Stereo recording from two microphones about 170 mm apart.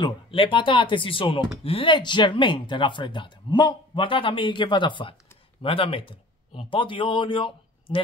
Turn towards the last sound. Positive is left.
turn(degrees=30)  # may be behind; listen again after turning